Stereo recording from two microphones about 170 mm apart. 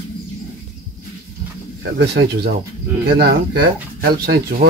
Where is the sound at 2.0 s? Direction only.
90° right.